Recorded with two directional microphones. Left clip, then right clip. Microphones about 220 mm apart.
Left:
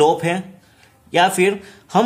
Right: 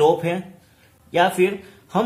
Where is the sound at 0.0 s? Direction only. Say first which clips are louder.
Left 2 dB; 40° left (ahead or behind).